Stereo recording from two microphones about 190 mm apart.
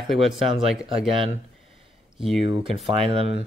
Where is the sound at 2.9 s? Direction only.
30° right (ahead or behind).